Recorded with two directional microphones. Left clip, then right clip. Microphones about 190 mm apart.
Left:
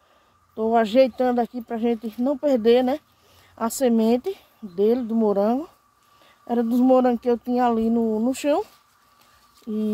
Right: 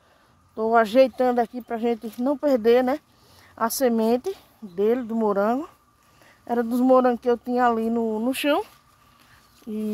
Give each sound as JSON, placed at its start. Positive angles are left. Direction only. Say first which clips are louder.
{"t": 0.6, "sound": "speech", "louder": "even", "side_deg": -15}